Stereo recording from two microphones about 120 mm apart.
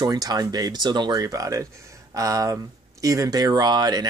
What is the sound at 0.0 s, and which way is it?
Speech, 35° right (ahead or behind).